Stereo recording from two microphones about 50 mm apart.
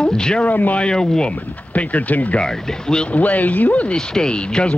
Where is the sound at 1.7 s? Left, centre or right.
Left.